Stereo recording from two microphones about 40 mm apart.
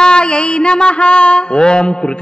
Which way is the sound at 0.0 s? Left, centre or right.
Left.